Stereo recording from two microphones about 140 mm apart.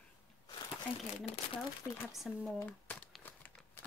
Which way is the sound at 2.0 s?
Centre (ahead or behind).